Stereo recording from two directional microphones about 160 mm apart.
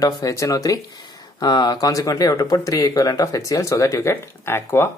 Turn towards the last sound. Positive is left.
turn(degrees=15)  # may be behind; listen again after turning